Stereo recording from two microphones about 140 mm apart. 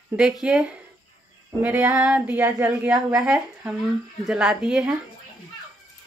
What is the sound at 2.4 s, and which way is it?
Speech, 25° right (ahead or behind).